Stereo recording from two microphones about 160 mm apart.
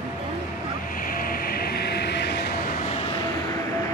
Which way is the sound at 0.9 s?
60° left (ahead or behind).